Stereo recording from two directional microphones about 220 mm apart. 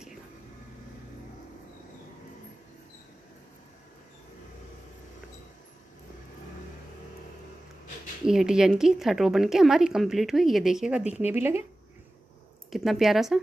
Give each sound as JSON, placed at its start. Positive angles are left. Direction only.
{"t": 8.3, "sound": "a woman's voice", "side_deg": -5}
{"t": 12.7, "sound": "a woman's voice", "side_deg": 0}